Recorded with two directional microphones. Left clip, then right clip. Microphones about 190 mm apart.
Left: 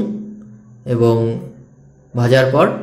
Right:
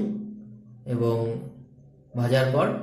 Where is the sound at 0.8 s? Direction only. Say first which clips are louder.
Left 11 dB; 35° left (ahead or behind).